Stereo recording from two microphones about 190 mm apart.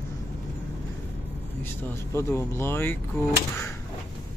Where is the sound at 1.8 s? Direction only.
15° left (ahead or behind).